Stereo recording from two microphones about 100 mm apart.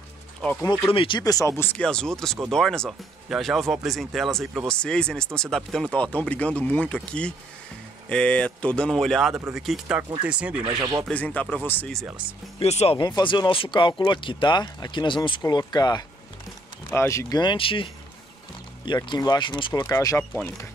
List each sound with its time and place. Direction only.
0.9 s speech: 60° left (ahead or behind)
1.2 s speech: 35° left (ahead or behind)
1.6 s speech: 15° left (ahead or behind)
9.8 s speech: 10° right (ahead or behind)
10.6 s speech: 45° right (ahead or behind)
11.1 s speech: 15° left (ahead or behind)
12.6 s speech: 90° left
13.0 s speech: 50° left (ahead or behind)
15.5 s speech: 45° left (ahead or behind)
16.9 s speech: 25° left (ahead or behind)
17.3 s speech: 50° left (ahead or behind)
19.0 s speech: 45° left (ahead or behind)
19.7 s speech: 40° left (ahead or behind)